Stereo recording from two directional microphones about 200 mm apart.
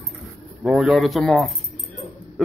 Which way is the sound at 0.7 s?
Centre (ahead or behind).